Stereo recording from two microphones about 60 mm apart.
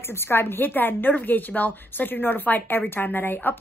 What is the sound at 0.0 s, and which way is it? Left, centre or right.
A woman's voice, left.